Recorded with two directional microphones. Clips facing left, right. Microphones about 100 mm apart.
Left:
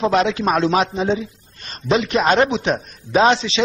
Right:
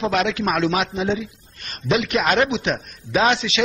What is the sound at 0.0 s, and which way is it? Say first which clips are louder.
A man's voice: left 3 dB; 30° left (ahead or behind).